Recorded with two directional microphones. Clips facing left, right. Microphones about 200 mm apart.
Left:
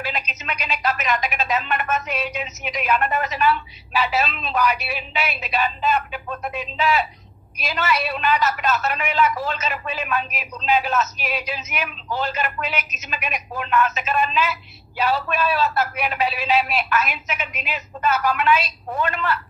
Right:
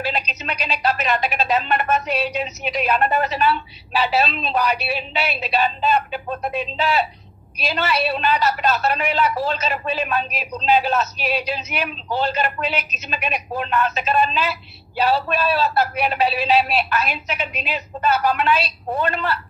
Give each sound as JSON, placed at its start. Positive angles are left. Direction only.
{"t": 0.0, "sound": "a man's voice", "side_deg": -35}